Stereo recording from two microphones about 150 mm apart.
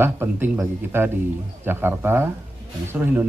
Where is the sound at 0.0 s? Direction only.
15° right (ahead or behind).